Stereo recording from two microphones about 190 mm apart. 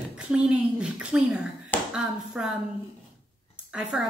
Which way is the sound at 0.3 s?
5° right (ahead or behind).